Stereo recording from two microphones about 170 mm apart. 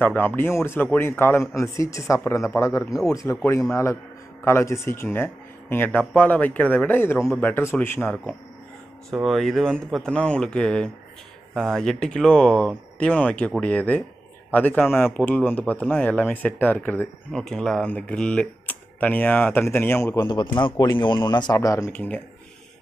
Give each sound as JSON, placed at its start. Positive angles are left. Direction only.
{"t": 0.0, "sound": "speech", "side_deg": 10}
{"t": 9.1, "sound": "speech", "side_deg": 0}
{"t": 20.2, "sound": "speech", "side_deg": 25}